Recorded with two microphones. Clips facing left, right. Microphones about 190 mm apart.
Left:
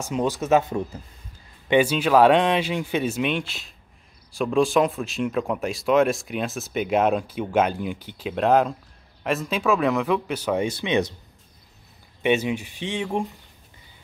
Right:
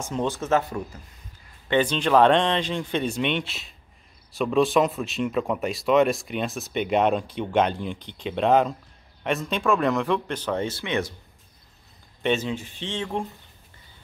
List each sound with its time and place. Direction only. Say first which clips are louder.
0.0 s speech: left 2 dB; 10° left (ahead or behind)
1.7 s speech: left 2 dB; 10° left (ahead or behind)
12.2 s speech: left 3 dB; 10° left (ahead or behind)